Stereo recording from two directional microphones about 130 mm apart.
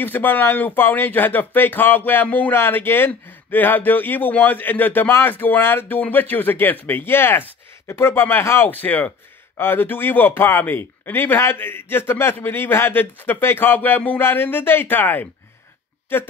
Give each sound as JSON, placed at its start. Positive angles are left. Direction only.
{"t": 0.0, "sound": "speech", "side_deg": 15}